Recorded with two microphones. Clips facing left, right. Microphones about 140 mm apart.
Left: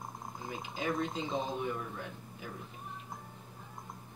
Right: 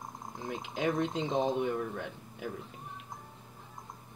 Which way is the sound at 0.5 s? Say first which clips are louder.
Right 4 dB; 65° right (ahead or behind).